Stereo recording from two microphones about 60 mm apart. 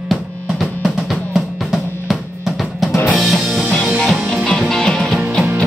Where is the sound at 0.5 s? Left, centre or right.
Centre.